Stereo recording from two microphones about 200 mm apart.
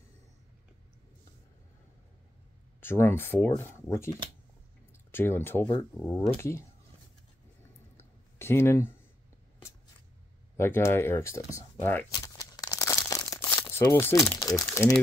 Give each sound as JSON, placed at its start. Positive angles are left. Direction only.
{"t": 2.8, "sound": "speech", "side_deg": 10}
{"t": 5.1, "sound": "speech", "side_deg": 10}
{"t": 8.0, "sound": "a sound", "side_deg": 10}
{"t": 10.6, "sound": "speech", "side_deg": 10}
{"t": 12.4, "sound": "crumpling", "side_deg": 20}